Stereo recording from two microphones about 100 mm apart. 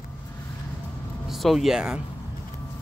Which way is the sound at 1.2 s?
Centre (ahead or behind).